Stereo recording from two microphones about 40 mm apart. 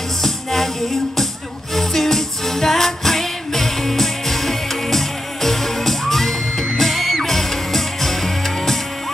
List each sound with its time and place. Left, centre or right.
0.2 s music: centre